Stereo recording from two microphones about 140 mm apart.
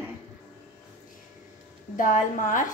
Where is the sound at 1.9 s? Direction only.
65° left (ahead or behind).